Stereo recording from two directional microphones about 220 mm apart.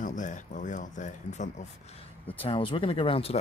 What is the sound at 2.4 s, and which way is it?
Speech, 25° left (ahead or behind).